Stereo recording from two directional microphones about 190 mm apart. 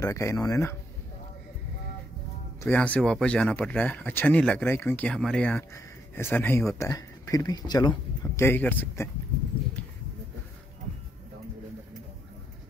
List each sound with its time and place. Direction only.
0.0 s speech: 15° left (ahead or behind)
2.6 s speech: 10° left (ahead or behind)
8.4 s speech: 10° left (ahead or behind)